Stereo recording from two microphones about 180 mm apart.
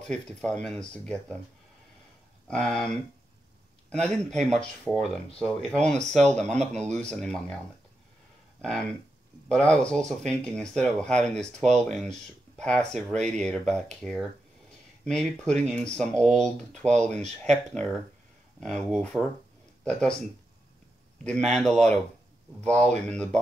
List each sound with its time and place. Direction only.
0.0 s speech: 5° left (ahead or behind)
2.4 s speech: 5° left (ahead or behind)
4.3 s speech: 40° right (ahead or behind)
4.6 s speech: centre (ahead or behind)
8.5 s speech: 5° left (ahead or behind)
21.2 s speech: 5° left (ahead or behind)